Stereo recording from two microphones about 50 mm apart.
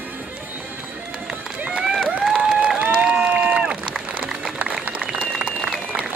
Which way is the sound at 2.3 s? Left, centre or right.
Right.